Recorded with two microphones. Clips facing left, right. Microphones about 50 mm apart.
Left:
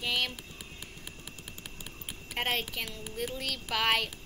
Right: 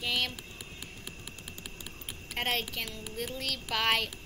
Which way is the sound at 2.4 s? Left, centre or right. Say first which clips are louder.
Even; centre.